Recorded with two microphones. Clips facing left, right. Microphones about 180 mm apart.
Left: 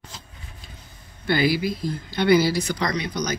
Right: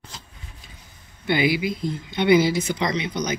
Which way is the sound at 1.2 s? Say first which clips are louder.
Even; 20° right (ahead or behind).